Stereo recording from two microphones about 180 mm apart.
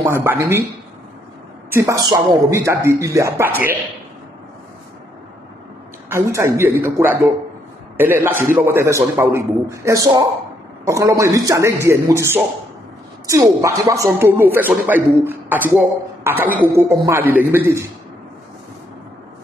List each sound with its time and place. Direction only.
0.0 s speech: 10° right (ahead or behind)
1.7 s speech: 15° right (ahead or behind)
6.0 s speech: 15° right (ahead or behind)